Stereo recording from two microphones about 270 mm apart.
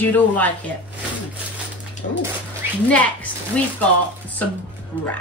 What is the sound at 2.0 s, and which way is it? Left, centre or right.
Speech, left.